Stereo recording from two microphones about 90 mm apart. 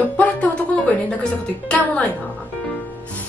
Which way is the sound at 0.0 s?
15° left (ahead or behind).